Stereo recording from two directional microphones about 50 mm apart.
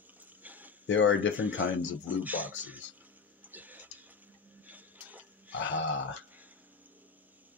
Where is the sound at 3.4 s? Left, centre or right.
Right.